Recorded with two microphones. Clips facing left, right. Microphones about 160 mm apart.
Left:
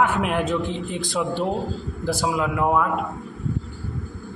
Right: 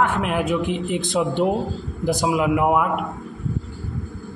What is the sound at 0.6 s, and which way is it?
Speech, 15° right (ahead or behind).